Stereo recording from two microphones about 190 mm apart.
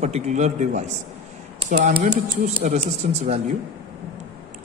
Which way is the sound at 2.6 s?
35° right (ahead or behind).